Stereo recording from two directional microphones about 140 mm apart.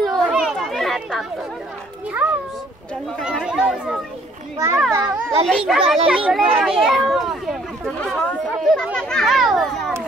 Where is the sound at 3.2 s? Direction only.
5° right (ahead or behind).